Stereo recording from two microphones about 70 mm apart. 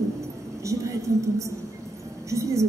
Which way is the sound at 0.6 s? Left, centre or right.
Right.